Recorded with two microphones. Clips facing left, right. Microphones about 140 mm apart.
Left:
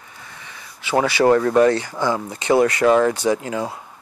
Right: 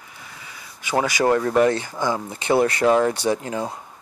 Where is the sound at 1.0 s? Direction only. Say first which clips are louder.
Left 4 dB; 15° right (ahead or behind).